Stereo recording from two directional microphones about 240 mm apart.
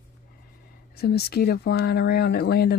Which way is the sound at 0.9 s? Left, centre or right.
Left.